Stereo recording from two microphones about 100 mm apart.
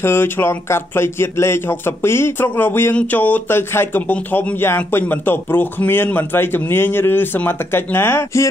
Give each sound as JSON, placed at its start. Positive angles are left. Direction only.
{"t": 0.0, "sound": "speech", "side_deg": 25}